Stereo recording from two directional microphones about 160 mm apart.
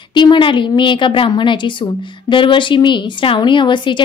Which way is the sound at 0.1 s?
30° left (ahead or behind).